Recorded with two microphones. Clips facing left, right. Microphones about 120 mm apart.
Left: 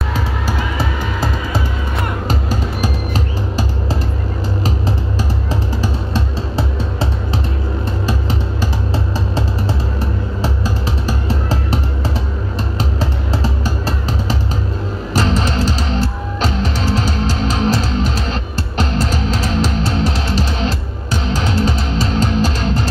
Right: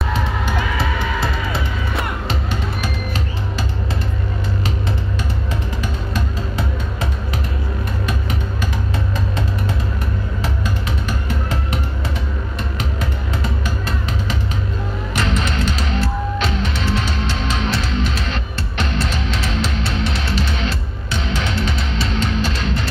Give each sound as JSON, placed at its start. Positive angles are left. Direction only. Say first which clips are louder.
{"t": 0.1, "sound": "music", "louder": "even", "side_deg": 40}
{"t": 5.5, "sound": "music", "louder": "left 4 dB", "side_deg": 30}
{"t": 8.9, "sound": "music", "louder": "left 3 dB", "side_deg": 30}